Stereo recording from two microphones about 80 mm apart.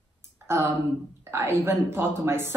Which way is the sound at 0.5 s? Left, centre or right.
Right.